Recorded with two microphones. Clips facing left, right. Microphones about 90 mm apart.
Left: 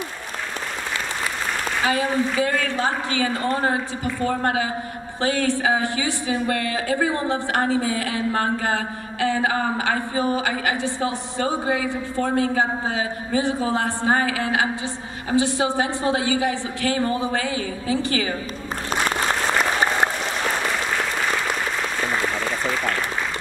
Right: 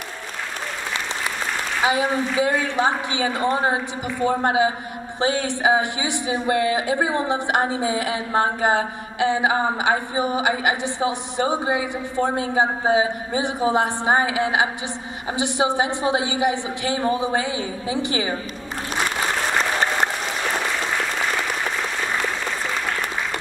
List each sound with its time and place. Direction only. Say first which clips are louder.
1.9 s a woman's voice: right 1 dB; 20° right (ahead or behind)